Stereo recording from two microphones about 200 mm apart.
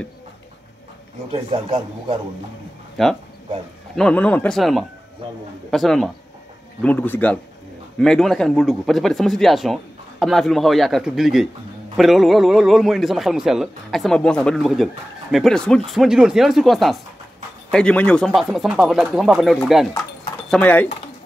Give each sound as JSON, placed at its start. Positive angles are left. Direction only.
{"t": 1.3, "sound": "a man's voice", "side_deg": -25}
{"t": 3.0, "sound": "speech", "side_deg": 0}